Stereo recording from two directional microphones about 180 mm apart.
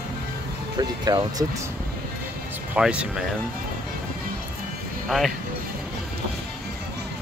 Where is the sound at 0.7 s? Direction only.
20° right (ahead or behind).